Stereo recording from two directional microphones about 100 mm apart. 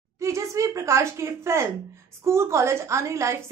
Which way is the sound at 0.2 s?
30° right (ahead or behind).